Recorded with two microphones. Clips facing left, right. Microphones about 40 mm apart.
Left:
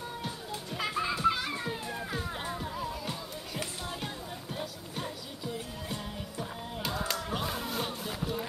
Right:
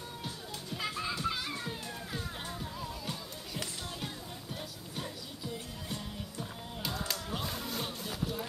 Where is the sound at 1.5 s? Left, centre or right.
Centre.